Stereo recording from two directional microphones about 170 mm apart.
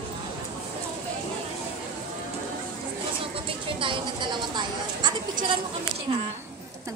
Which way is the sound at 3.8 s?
30° right (ahead or behind).